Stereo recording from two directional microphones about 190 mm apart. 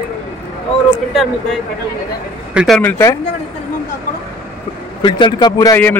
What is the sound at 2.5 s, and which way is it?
Speech, centre (ahead or behind).